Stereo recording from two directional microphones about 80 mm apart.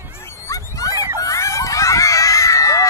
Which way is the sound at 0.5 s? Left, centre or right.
Left.